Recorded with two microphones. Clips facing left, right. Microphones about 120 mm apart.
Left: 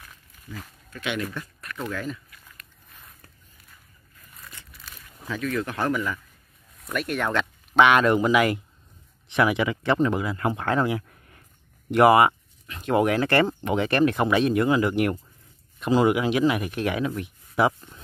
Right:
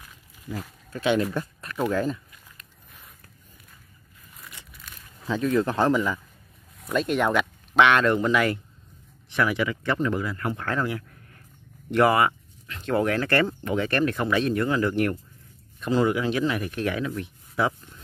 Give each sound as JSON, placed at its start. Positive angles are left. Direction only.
{"t": 0.5, "sound": "speech", "side_deg": -30}
{"t": 5.3, "sound": "a man's voice", "side_deg": -25}
{"t": 7.7, "sound": "speech", "side_deg": 5}
{"t": 9.3, "sound": "speech", "side_deg": 20}